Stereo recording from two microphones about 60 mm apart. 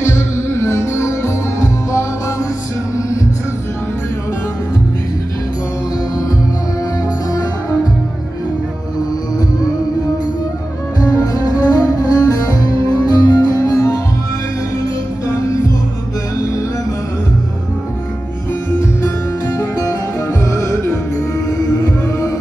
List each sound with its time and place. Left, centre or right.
0.0 s music: left
11.0 s music: left
15.2 s music: left
19.8 s music: left
20.4 s music: left